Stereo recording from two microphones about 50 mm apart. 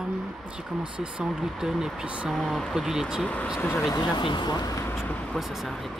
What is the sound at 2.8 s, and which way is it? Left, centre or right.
Speech, centre.